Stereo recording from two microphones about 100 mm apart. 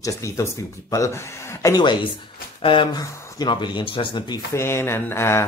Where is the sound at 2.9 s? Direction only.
45° left (ahead or behind).